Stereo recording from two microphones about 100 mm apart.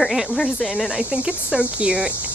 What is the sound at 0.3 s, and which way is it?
Speech, 10° left (ahead or behind).